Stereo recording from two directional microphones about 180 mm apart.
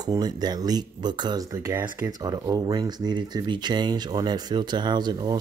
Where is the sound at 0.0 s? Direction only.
20° right (ahead or behind).